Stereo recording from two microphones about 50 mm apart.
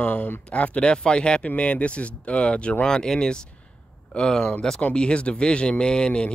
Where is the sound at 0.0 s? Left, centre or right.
Left.